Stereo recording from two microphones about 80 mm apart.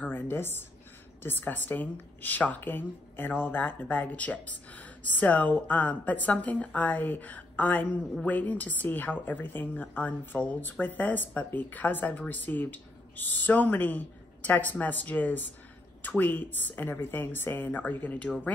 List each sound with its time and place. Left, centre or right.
0.0 s a woman's voice: left